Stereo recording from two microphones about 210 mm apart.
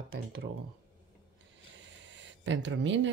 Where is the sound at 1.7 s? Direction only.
60° right (ahead or behind).